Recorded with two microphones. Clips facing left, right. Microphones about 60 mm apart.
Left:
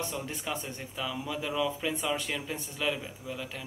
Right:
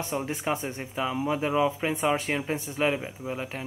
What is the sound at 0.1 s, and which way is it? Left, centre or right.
Speech, right.